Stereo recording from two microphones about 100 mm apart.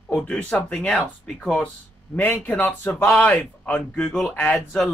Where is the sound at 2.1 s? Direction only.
20° left (ahead or behind).